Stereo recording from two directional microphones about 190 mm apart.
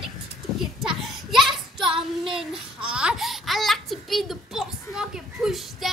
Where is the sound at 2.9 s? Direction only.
5° right (ahead or behind).